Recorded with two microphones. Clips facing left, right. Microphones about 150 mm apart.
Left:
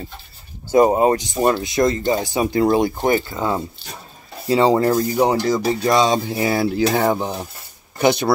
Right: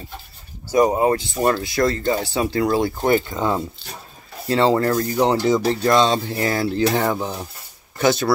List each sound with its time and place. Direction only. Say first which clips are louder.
0.7 s speech: left 3 dB; 25° left (ahead or behind)
3.3 s speech: even; 5° left (ahead or behind)